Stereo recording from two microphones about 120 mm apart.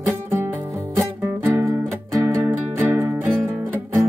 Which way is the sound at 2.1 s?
25° right (ahead or behind).